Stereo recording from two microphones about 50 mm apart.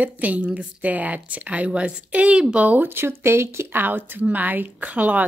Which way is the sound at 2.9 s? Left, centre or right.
Right.